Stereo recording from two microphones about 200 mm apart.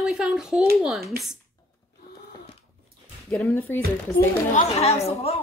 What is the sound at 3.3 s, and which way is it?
Speech, 10° left (ahead or behind).